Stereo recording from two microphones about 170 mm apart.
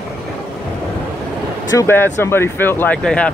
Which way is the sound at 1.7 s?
15° left (ahead or behind).